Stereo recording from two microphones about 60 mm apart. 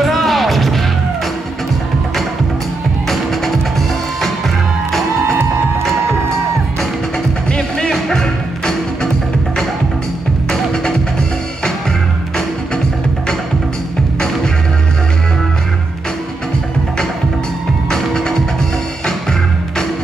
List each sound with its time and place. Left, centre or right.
0.0 s music: centre
7.5 s music: centre
10.5 s music: centre
17.8 s music: centre